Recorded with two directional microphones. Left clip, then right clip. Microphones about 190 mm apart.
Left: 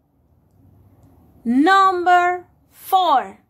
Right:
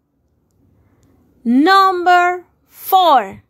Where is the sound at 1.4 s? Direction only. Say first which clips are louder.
Right 3 dB; 30° right (ahead or behind).